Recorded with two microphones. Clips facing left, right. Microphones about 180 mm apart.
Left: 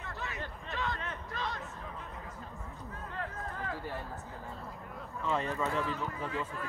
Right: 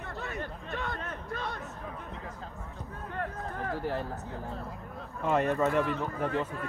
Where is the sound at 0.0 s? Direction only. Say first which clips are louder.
Right 4 dB; 55° right (ahead or behind).